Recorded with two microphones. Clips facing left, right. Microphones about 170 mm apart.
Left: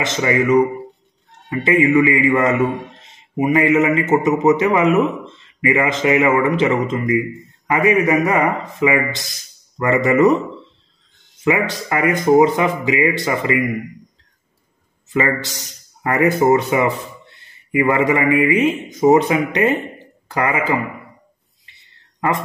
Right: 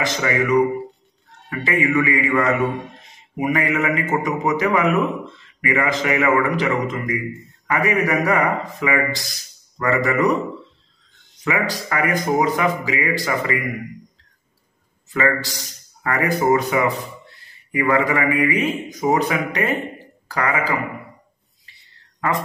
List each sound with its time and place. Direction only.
0.0 s a man's voice: 25° left (ahead or behind)
11.4 s a man's voice: 25° left (ahead or behind)
15.1 s a man's voice: 20° left (ahead or behind)